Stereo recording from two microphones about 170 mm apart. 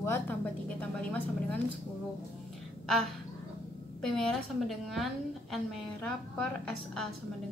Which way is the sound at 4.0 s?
5° left (ahead or behind).